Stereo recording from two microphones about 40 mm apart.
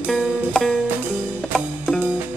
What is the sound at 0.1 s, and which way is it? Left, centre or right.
Music, centre.